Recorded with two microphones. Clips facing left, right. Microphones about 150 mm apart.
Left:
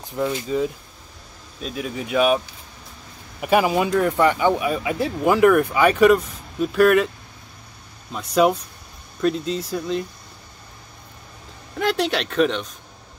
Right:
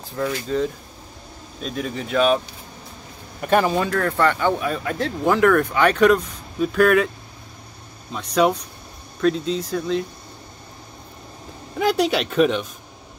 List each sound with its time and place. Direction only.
0.0 s speech: 20° left (ahead or behind)
1.6 s speech: 5° left (ahead or behind)
8.1 s speech: centre (ahead or behind)
11.8 s speech: 5° right (ahead or behind)